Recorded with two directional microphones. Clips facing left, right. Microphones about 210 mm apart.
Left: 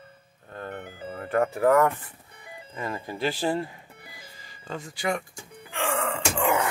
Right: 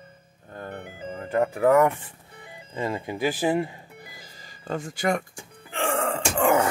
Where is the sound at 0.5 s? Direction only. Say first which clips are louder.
Even; 15° right (ahead or behind).